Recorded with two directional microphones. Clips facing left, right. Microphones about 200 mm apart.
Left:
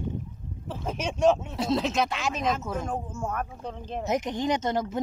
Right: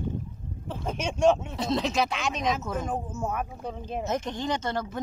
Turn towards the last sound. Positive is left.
turn(degrees=20)  # may be behind; listen again after turning